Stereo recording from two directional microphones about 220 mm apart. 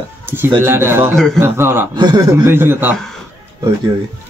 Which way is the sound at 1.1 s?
Centre (ahead or behind).